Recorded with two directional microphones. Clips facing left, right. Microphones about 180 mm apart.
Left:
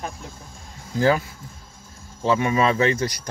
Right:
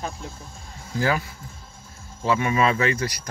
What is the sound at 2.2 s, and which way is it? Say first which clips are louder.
Speech: left 2 dB; 30° left (ahead or behind).